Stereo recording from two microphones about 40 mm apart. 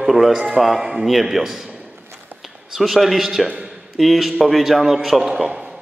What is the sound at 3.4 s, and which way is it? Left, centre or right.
Speech, right.